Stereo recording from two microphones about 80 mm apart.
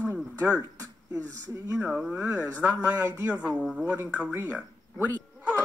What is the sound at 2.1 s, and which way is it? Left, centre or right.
A man's voice, centre.